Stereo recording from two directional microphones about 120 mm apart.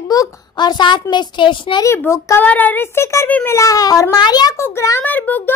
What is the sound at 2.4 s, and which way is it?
A child's voice, 15° left (ahead or behind).